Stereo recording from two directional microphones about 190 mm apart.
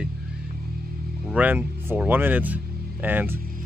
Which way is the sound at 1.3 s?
10° right (ahead or behind).